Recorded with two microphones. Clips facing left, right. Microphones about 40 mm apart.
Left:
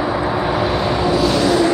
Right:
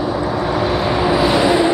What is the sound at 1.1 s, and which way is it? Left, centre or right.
Vehicle, centre.